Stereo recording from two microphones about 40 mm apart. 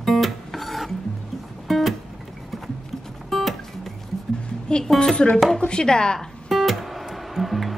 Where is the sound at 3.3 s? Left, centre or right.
Centre.